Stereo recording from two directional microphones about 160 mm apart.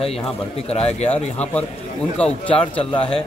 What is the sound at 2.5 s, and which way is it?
Speech, 35° left (ahead or behind).